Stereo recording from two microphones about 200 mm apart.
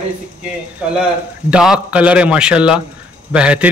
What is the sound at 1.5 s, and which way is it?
A man's voice, 5° right (ahead or behind).